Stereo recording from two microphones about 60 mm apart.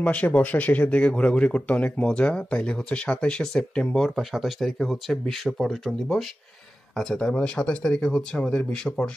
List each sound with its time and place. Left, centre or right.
0.0 s speech: left
4.1 s speech: centre
7.0 s speech: centre